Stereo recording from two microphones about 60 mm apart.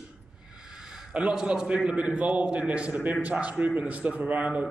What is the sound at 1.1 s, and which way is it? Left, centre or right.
A man's voice, centre.